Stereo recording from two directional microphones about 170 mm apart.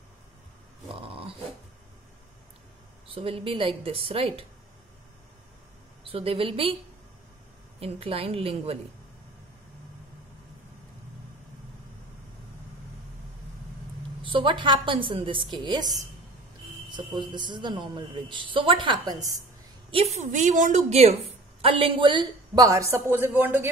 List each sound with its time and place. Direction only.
1.0 s dog: 35° right (ahead or behind)
3.1 s a woman's voice: 35° right (ahead or behind)
6.0 s a woman's voice: 35° right (ahead or behind)
7.8 s a woman's voice: 35° right (ahead or behind)
14.2 s a woman's voice: 30° right (ahead or behind)
17.3 s a woman's voice: 25° right (ahead or behind)
19.9 s a woman's voice: 35° right (ahead or behind); by 23.7 s 10° right (ahead or behind)